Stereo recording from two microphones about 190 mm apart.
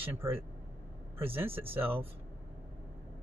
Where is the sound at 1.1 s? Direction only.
30° right (ahead or behind).